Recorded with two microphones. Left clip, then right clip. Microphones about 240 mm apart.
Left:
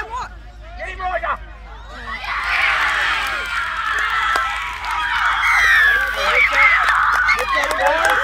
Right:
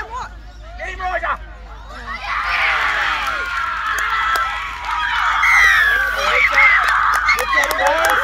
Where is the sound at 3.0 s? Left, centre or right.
Left.